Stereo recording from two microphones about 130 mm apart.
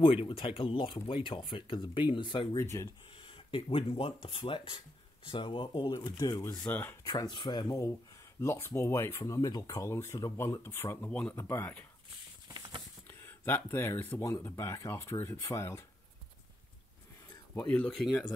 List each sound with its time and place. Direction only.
0.0 s speech: 45° left (ahead or behind)
2.5 s speech: 20° left (ahead or behind)
3.3 s speech: 45° left (ahead or behind); by 7.0 s 15° left (ahead or behind)
7.1 s speech: 30° left (ahead or behind)
12.4 s a sound: 30° right (ahead or behind)
13.2 s speech: 15° left (ahead or behind)
17.3 s a sound: 15° left (ahead or behind)